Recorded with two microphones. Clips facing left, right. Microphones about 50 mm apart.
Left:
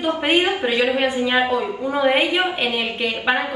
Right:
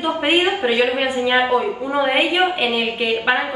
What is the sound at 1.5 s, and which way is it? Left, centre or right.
A woman's voice, centre.